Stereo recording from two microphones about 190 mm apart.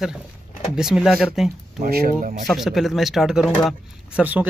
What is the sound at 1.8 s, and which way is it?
Speech, 50° right (ahead or behind).